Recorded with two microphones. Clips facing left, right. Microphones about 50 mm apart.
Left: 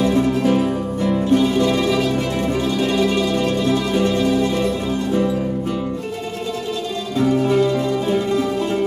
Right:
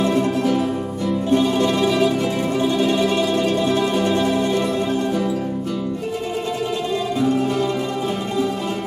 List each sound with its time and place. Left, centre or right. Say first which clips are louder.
1.7 s mandolin: even; centre
2.9 s music: even; centre